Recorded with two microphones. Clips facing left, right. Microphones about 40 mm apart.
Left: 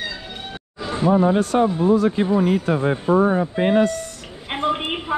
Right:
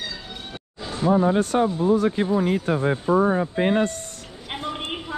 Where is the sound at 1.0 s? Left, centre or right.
Left.